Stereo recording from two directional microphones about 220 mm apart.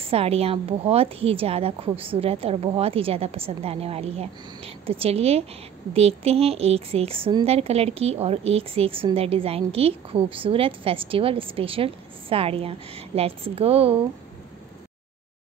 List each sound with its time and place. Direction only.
0.0 s a woman's voice: 25° right (ahead or behind)